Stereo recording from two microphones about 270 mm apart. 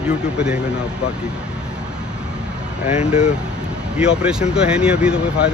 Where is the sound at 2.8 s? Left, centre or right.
Left.